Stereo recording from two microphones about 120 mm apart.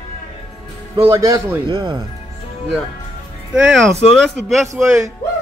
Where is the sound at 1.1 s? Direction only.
30° right (ahead or behind).